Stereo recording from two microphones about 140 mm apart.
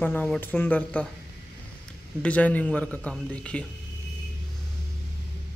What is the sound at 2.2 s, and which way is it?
Speech, 10° left (ahead or behind).